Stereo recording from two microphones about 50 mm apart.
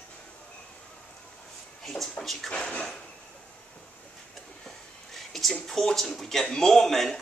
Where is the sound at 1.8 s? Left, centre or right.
Centre.